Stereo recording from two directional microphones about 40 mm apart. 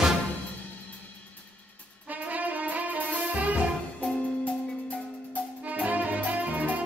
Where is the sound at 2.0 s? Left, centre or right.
Right.